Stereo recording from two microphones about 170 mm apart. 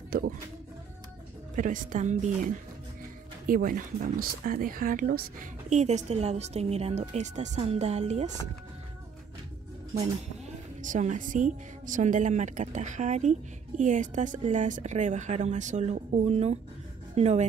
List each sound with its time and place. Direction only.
1.5 s a woman's voice: 50° right (ahead or behind)
3.4 s speech: 55° right (ahead or behind)
5.7 s speech: 45° right (ahead or behind)
10.8 s a woman's voice: 45° right (ahead or behind)